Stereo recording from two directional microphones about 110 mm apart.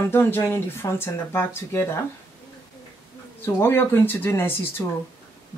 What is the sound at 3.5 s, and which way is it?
Speech, 20° left (ahead or behind).